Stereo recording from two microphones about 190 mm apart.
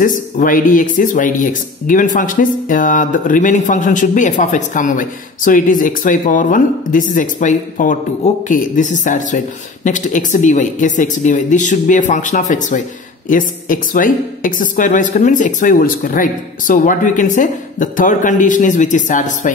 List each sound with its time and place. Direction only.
0.0 s speech: 45° left (ahead or behind)